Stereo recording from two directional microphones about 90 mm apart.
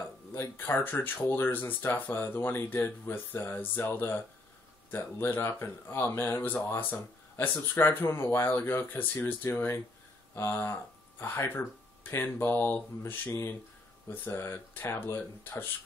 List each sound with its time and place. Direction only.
0.6 s speech: 20° left (ahead or behind)